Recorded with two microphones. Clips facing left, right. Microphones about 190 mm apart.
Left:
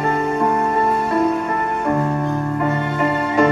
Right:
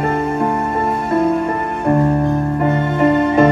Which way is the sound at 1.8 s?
30° right (ahead or behind).